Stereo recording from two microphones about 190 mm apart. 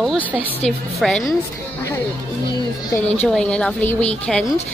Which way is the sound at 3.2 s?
5° left (ahead or behind).